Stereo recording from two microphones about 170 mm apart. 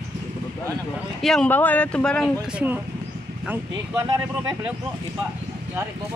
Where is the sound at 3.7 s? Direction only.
20° right (ahead or behind).